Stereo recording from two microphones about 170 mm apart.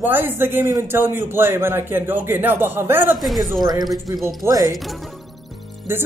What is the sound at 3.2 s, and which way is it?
Speech, centre (ahead or behind).